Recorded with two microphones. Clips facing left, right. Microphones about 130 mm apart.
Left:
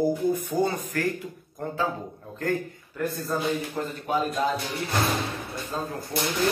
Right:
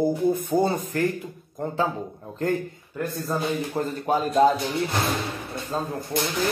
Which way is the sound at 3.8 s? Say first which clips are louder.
Right 4 dB; 40° right (ahead or behind).